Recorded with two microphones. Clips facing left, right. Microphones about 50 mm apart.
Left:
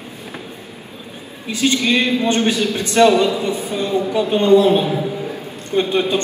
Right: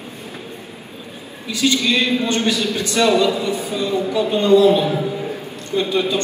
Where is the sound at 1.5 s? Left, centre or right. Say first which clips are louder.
Left 1 dB; left.